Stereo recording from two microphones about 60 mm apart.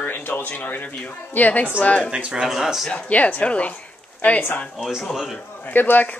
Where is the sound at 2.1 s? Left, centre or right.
Centre.